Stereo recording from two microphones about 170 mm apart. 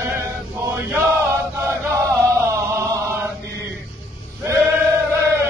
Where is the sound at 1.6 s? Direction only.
15° right (ahead or behind).